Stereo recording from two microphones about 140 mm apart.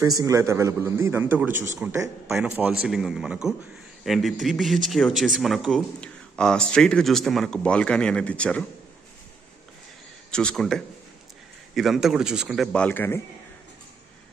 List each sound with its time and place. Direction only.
0.0 s a man's voice: 25° right (ahead or behind)
2.2 s speech: 5° right (ahead or behind)
10.3 s speech: 5° left (ahead or behind)